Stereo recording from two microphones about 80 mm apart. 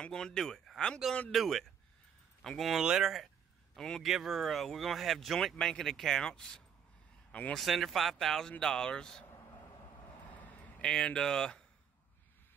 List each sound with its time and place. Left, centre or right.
0.0 s speech: centre
2.8 s speech: centre
3.7 s a man's voice: centre
4.0 s speech: centre
10.3 s a sound: centre
10.9 s speech: centre